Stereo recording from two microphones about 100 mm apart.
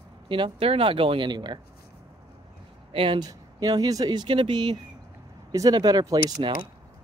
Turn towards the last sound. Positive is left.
turn(degrees=-40)  # may be behind; listen again after turning